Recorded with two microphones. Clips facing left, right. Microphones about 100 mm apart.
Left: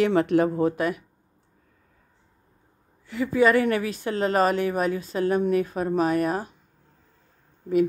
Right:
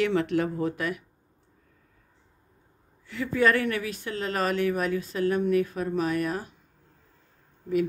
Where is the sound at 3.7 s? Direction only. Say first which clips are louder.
Left 5 dB; 35° left (ahead or behind).